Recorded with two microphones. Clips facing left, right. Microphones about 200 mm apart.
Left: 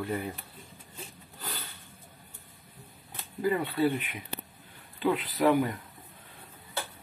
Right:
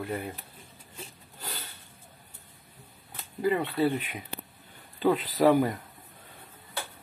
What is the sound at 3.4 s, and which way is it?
Speech, 25° right (ahead or behind).